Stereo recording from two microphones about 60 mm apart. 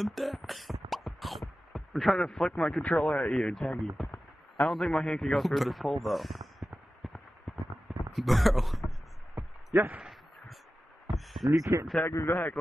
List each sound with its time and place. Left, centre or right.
0.0 s beatboxing: centre
1.7 s a sound: centre
2.1 s speech: centre
2.8 s speech: left
3.3 s a man's voice: centre
7.0 s a sound: centre
8.1 s speech: centre
9.8 s speech: right
11.1 s heart sounds: centre
11.5 s speech: right
12.3 s speech: left